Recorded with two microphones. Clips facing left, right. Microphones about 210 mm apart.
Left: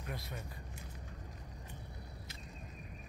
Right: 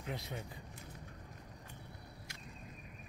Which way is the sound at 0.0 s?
20° right (ahead or behind).